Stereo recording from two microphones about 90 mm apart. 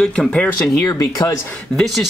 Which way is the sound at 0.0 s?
10° left (ahead or behind).